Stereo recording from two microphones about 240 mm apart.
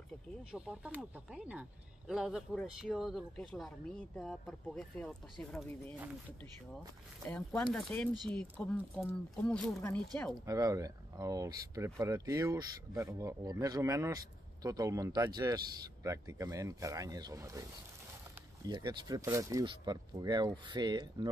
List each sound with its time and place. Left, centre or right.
0.4 s speech: centre
7.2 s speech: centre
10.4 s speech: centre
18.7 s speech: centre